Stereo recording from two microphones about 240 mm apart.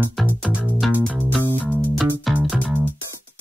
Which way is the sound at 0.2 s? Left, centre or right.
Centre.